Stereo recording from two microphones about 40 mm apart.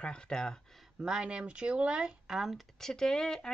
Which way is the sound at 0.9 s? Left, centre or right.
Centre.